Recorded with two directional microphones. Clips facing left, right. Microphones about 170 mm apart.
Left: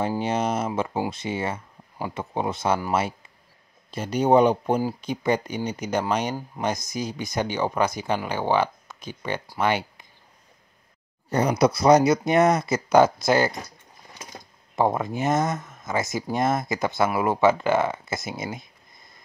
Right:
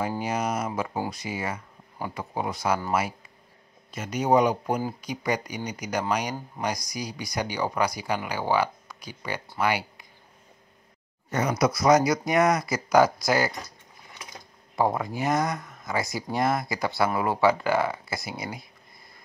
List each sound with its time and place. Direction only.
0.2 s speech: 25° left (ahead or behind)
11.2 s speech: 30° left (ahead or behind)
14.8 s speech: 20° left (ahead or behind)